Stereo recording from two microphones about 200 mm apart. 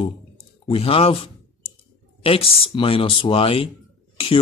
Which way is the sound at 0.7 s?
30° left (ahead or behind).